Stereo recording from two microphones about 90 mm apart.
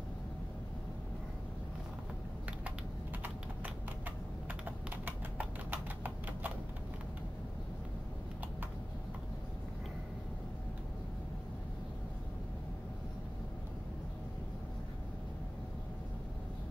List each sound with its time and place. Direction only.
4.5 s typing: 20° right (ahead or behind)